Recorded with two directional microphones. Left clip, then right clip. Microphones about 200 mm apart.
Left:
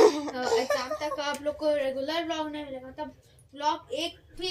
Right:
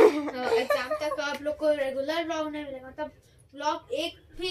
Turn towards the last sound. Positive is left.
turn(degrees=0)  # may be behind; listen again after turning